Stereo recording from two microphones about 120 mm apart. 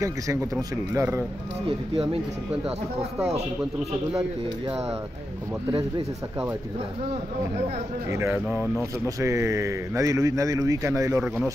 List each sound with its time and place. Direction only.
0.0 s speech: 25° right (ahead or behind)
5.7 s speech: 45° right (ahead or behind)
8.1 s speech: 25° right (ahead or behind)